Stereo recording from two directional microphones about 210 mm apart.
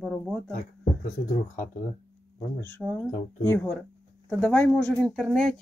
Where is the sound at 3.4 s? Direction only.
10° left (ahead or behind).